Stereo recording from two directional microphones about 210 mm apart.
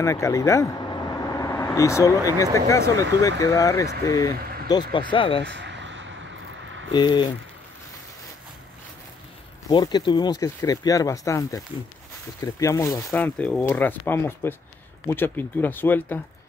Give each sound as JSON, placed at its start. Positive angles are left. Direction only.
{"t": 0.0, "sound": "speech", "side_deg": 15}
{"t": 5.5, "sound": "a sound", "side_deg": -60}
{"t": 6.9, "sound": "speech", "side_deg": 20}
{"t": 9.7, "sound": "speech", "side_deg": 20}